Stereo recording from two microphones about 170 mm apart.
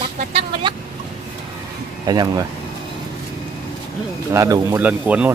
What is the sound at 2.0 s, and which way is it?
Speech, 25° right (ahead or behind).